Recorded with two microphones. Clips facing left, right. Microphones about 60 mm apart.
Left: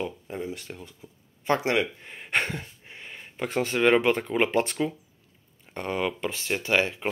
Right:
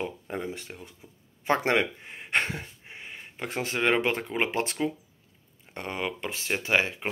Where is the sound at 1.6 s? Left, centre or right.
Right.